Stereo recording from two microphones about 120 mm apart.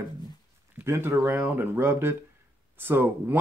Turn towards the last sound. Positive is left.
turn(degrees=-15)  # may be behind; listen again after turning